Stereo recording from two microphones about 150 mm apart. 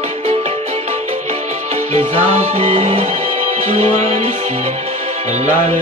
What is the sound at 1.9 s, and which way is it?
Music, 45° right (ahead or behind).